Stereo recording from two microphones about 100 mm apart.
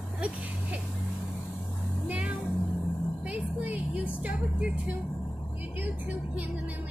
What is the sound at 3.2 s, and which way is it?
Vehicle, 15° right (ahead or behind).